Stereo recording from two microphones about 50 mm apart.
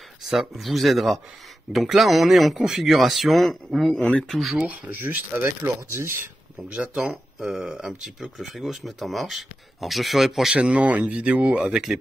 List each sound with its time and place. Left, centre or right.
0.3 s speech: centre
4.6 s speech: right
6.8 s speech: right
7.3 s speech: centre
10.5 s speech: right